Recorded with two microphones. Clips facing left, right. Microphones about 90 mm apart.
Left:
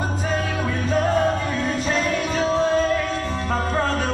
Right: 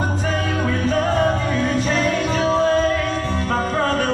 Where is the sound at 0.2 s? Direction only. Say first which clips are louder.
Right 2 dB; 10° left (ahead or behind).